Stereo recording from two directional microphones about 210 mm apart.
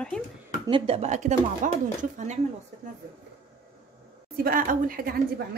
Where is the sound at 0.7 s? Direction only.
25° right (ahead or behind).